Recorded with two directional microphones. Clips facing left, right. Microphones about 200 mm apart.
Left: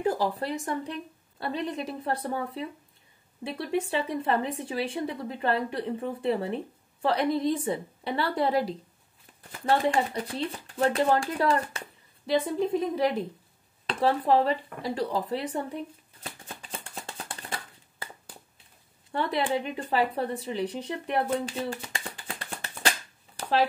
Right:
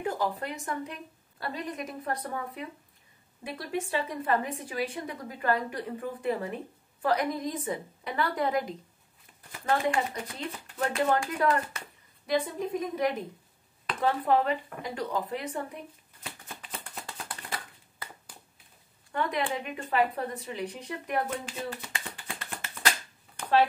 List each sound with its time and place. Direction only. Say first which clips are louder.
0.0 s speech: left 4 dB; 35° left (ahead or behind)
16.9 s a sound: left 2 dB; 30° left (ahead or behind)
19.1 s speech: left 3 dB; 30° left (ahead or behind)